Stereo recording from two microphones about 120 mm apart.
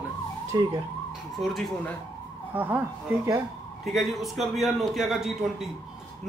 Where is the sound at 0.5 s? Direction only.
40° right (ahead or behind).